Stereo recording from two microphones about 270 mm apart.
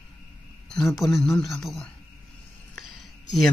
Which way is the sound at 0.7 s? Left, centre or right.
Centre.